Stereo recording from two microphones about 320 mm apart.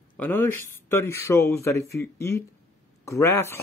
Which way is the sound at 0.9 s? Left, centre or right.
Centre.